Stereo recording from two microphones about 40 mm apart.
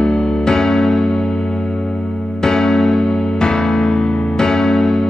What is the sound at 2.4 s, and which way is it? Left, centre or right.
Music, centre.